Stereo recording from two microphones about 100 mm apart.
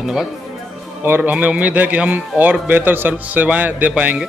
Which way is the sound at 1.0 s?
20° right (ahead or behind).